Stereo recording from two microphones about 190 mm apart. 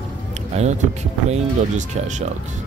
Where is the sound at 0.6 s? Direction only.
35° right (ahead or behind).